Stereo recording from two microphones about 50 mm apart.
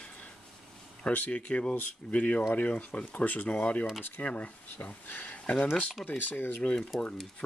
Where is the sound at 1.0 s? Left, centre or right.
Left.